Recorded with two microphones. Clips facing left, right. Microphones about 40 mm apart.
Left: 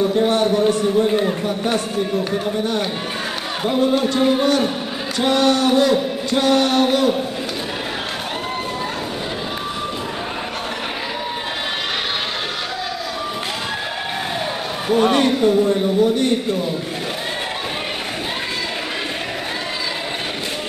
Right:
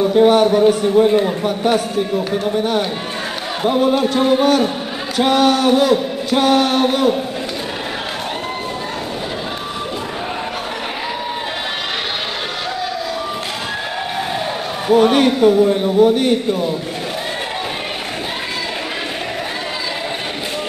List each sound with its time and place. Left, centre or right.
0.1 s a man's voice: centre
2.4 s a man's voice: centre
14.9 s a man's voice: centre